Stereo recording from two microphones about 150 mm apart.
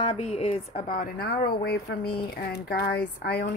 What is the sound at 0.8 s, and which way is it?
Speech, 70° left (ahead or behind).